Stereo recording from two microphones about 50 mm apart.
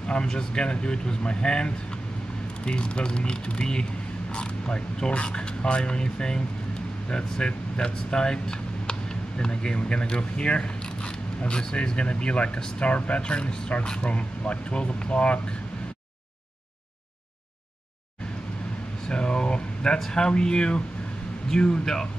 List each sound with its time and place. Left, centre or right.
0.1 s speech: centre
19.0 s speech: centre